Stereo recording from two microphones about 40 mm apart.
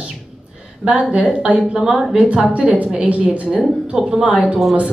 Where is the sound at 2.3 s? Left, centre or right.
Right.